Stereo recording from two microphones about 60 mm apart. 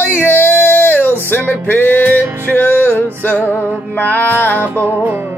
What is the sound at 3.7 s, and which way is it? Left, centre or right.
Music, right.